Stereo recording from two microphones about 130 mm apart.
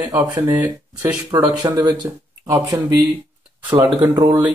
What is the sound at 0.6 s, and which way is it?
Speech, 10° right (ahead or behind).